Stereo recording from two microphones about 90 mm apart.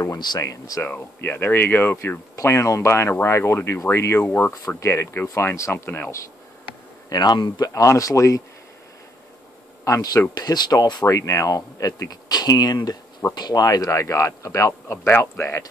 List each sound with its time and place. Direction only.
0.2 s a man's voice: 45° left (ahead or behind)
0.8 s speech: 20° left (ahead or behind)
2.3 s a man's voice: 35° left (ahead or behind)
4.2 s speech: 20° left (ahead or behind)
4.5 s a man's voice: 35° left (ahead or behind)
7.1 s a man's voice: 50° left (ahead or behind)
9.8 s a man's voice: 35° left (ahead or behind)
10.3 s speech: 50° left (ahead or behind)
11.1 s a man's voice: 35° left (ahead or behind)